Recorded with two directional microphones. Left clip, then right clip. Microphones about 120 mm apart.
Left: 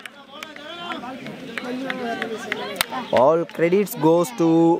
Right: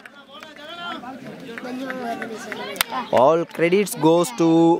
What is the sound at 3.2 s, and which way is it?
A man's voice, 15° right (ahead or behind).